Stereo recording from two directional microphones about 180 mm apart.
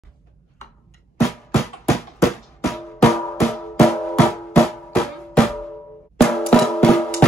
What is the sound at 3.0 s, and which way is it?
Music, 15° left (ahead or behind).